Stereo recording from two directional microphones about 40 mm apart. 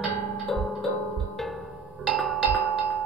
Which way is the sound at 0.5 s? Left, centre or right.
Centre.